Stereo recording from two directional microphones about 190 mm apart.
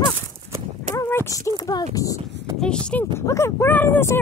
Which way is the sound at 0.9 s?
15° left (ahead or behind).